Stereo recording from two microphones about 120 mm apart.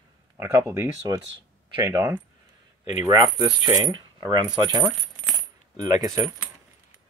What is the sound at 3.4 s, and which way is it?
Speech, 20° right (ahead or behind).